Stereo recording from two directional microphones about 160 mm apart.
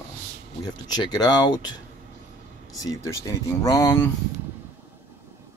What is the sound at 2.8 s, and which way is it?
Speech, 20° left (ahead or behind).